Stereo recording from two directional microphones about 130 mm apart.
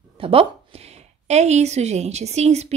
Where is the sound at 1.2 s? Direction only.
60° right (ahead or behind).